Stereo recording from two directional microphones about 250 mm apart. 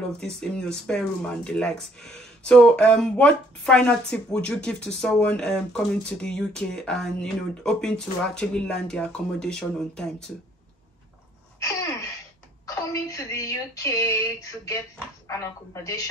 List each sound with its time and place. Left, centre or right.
0.4 s speech: centre
12.6 s speech: centre